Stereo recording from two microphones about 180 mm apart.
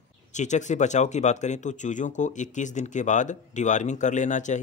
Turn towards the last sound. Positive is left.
turn(degrees=45)  # may be behind; listen again after turning